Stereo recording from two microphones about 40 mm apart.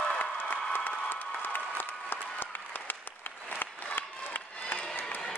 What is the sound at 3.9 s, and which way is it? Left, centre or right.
Crowd, left.